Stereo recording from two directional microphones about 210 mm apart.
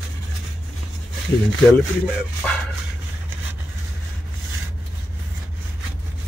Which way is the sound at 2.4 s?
5° left (ahead or behind).